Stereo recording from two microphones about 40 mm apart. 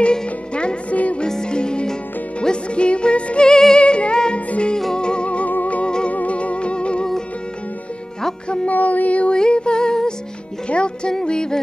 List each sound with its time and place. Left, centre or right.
0.0 s music: left
0.8 s music: left
1.2 s music: centre
3.4 s music: centre
8.6 s music: left
9.3 s music: left